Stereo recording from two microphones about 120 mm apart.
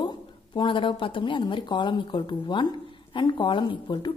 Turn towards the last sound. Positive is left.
turn(degrees=40)  # may be behind; listen again after turning